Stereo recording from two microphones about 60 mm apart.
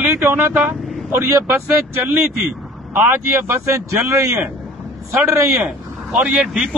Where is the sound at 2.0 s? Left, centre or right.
Right.